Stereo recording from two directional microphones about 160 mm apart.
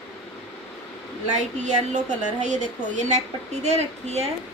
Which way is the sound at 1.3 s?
45° right (ahead or behind).